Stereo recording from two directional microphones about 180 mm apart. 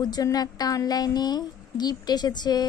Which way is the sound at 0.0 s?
20° left (ahead or behind).